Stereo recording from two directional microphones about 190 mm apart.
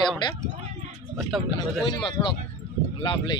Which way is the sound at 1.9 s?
25° left (ahead or behind).